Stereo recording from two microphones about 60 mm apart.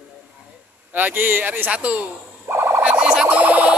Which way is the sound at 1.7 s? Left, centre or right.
Right.